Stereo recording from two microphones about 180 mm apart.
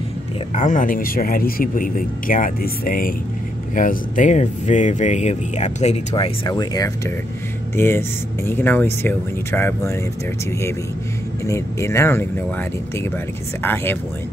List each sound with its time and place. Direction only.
0.6 s speech: 45° left (ahead or behind)
6.1 s speech: 25° left (ahead or behind)
11.4 s speech: 15° left (ahead or behind)
13.6 s speech: 10° left (ahead or behind)